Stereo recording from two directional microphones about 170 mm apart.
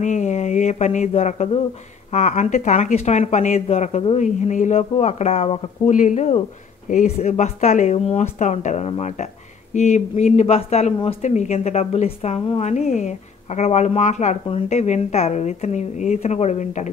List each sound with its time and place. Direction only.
0.0 s a woman's voice: 45° left (ahead or behind)